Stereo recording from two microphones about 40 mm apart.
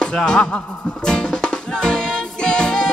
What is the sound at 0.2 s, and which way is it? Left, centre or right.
Music, centre.